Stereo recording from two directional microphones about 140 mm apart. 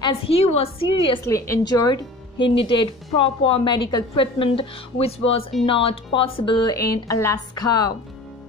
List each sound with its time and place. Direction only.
0.0 s a woman's voice: 45° left (ahead or behind)
1.2 s a woman's voice: 20° left (ahead or behind)
2.3 s a woman's voice: 35° left (ahead or behind)